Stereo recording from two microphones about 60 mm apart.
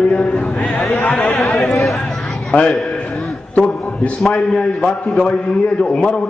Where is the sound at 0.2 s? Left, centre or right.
Centre.